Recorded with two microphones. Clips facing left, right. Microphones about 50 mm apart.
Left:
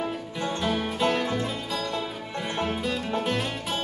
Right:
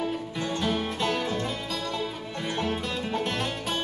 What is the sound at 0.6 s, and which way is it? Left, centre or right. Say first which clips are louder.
Music: left 1 dB; centre.